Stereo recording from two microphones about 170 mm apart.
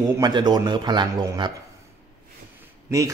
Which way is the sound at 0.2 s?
25° right (ahead or behind).